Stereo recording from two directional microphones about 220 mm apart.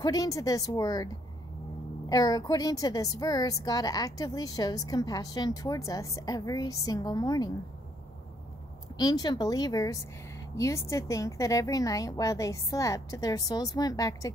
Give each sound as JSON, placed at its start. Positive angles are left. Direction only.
{"t": 0.0, "sound": "a woman's voice", "side_deg": 15}
{"t": 8.9, "sound": "a woman's voice", "side_deg": 15}